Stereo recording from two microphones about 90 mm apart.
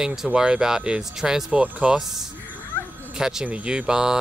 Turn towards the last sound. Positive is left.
turn(degrees=-10)  # may be behind; listen again after turning